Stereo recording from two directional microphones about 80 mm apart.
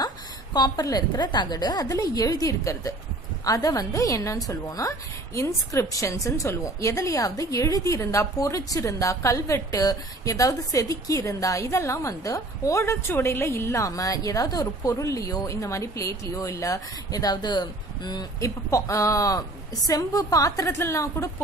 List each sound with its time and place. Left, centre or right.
0.0 s a sound: left
0.8 s a woman's voice: left
18.4 s a woman's voice: left